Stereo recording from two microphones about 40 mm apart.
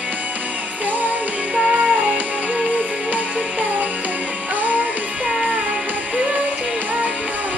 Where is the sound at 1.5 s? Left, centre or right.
Right.